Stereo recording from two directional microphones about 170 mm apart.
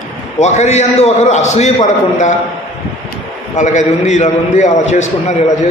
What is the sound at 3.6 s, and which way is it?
A man's voice, 45° left (ahead or behind).